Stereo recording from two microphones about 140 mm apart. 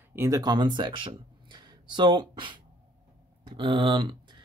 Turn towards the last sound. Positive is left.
turn(degrees=-35)  # may be behind; listen again after turning